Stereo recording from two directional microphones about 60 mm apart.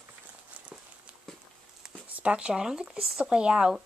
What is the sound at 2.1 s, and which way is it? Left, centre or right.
Speech, centre.